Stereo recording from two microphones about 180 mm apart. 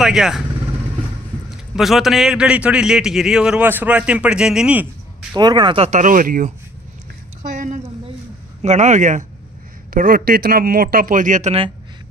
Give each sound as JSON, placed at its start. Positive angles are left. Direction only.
{"t": 0.0, "sound": "a man's voice", "side_deg": 0}
{"t": 1.8, "sound": "a man's voice", "side_deg": 0}
{"t": 5.3, "sound": "speech", "side_deg": -25}
{"t": 7.5, "sound": "a sound", "side_deg": -45}
{"t": 8.6, "sound": "speech", "side_deg": -40}